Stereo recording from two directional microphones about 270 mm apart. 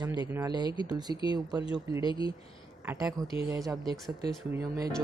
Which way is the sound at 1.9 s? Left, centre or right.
Centre.